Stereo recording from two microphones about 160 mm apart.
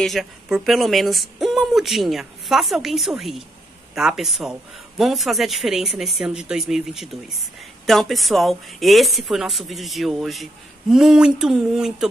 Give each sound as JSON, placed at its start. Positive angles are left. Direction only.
{"t": 0.0, "sound": "speech", "side_deg": 0}